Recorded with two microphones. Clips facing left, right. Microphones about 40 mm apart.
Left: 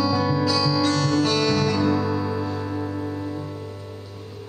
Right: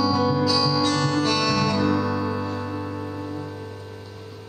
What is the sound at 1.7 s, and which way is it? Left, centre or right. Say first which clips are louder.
Music: even; centre.